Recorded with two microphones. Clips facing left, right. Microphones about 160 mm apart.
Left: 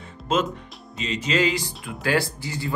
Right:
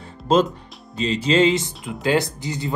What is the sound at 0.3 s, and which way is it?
Speech, 35° right (ahead or behind).